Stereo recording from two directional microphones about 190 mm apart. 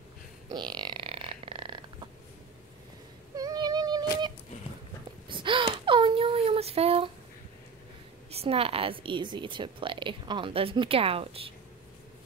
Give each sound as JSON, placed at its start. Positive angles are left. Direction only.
{"t": 0.5, "sound": "burping", "side_deg": -25}
{"t": 3.3, "sound": "female singing", "side_deg": -20}
{"t": 5.3, "sound": "a sound", "side_deg": -25}
{"t": 8.3, "sound": "a woman's voice", "side_deg": -30}